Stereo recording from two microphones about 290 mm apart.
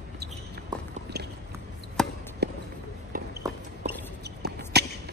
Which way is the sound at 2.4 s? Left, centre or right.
Right.